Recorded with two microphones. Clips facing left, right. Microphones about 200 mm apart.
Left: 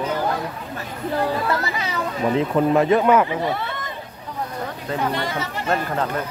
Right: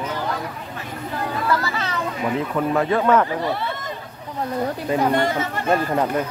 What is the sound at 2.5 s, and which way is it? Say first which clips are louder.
Speech: left 4 dB; 20° left (ahead or behind).